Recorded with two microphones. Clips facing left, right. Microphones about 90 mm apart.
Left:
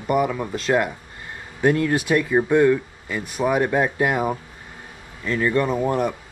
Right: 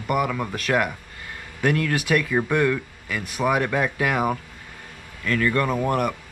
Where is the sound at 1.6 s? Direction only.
20° left (ahead or behind).